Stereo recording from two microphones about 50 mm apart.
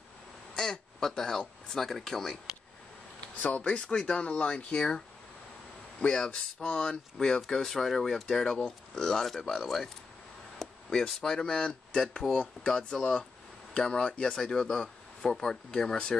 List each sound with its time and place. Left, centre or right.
0.6 s speech: centre
3.3 s speech: left
3.8 s speech: centre
5.9 s speech: centre
8.5 s speech: left
9.0 s speech: centre